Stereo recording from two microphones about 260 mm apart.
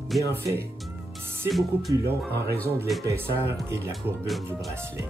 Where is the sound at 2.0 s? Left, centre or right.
Right.